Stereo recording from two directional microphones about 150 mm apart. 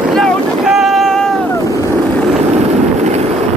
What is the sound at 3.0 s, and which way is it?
Vehicle, 50° right (ahead or behind).